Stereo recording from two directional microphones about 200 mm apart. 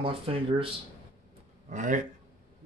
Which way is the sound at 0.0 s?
25° right (ahead or behind).